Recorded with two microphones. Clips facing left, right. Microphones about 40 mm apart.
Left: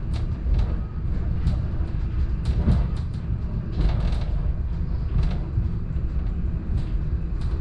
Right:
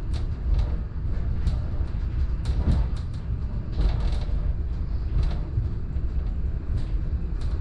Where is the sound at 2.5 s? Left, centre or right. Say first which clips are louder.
Left 4 dB; centre.